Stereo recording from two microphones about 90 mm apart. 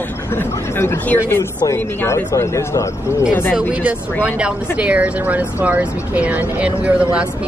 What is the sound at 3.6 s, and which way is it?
Speech, 10° right (ahead or behind).